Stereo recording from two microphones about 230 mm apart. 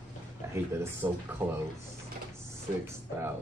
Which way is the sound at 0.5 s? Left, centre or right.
Centre.